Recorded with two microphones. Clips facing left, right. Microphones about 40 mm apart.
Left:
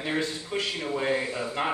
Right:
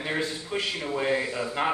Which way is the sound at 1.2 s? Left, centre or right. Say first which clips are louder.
Right 1 dB; centre.